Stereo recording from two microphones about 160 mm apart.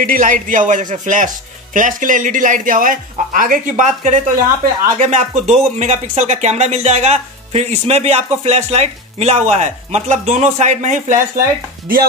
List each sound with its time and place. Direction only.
0.0 s speech: 60° right (ahead or behind)